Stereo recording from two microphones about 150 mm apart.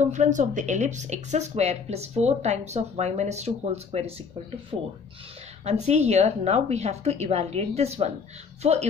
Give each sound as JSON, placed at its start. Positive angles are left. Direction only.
{"t": 0.0, "sound": "speech", "side_deg": -55}